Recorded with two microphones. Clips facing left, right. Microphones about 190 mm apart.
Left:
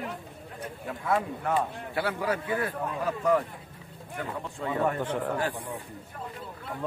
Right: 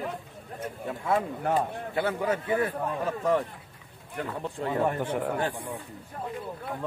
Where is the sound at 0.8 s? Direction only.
25° right (ahead or behind).